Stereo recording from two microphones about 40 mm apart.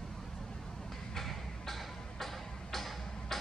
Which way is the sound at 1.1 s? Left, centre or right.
Centre.